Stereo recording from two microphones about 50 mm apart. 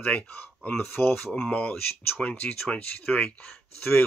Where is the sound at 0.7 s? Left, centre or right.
Left.